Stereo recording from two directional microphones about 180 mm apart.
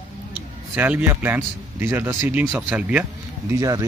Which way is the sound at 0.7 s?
10° right (ahead or behind).